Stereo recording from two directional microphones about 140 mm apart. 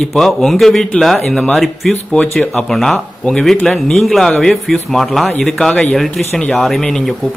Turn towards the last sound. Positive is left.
turn(degrees=0)  # may be behind; listen again after turning